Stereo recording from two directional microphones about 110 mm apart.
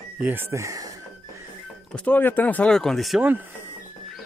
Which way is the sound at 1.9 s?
15° left (ahead or behind).